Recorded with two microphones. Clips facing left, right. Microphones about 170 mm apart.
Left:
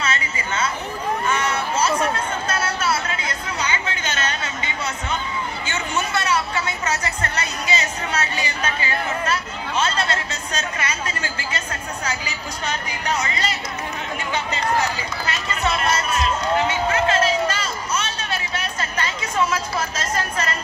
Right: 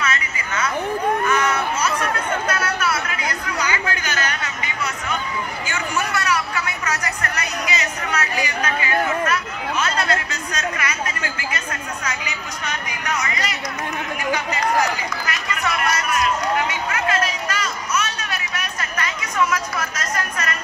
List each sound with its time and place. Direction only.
0.0 s a sound: 30° left (ahead or behind)
9.2 s chatter: 30° left (ahead or behind)
14.3 s run: 25° left (ahead or behind)